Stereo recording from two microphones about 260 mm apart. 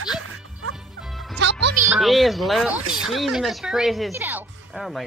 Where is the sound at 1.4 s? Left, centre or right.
Right.